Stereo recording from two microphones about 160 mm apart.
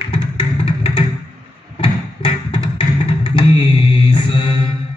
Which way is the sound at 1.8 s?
35° left (ahead or behind).